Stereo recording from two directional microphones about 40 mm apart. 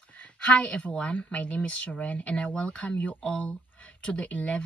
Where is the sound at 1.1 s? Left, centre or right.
Left.